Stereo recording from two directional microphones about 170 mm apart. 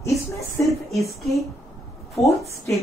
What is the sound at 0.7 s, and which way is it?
Speech, centre (ahead or behind).